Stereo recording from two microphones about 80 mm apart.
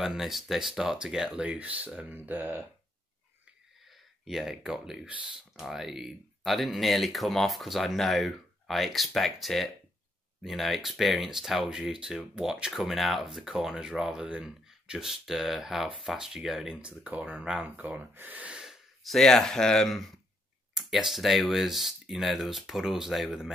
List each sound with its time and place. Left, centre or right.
0.0 s speech: centre
1.4 s speech: centre
3.9 s speech: centre
17.6 s speech: centre
18.5 s speech: centre